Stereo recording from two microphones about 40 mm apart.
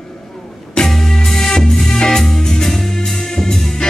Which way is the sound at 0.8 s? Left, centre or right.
Centre.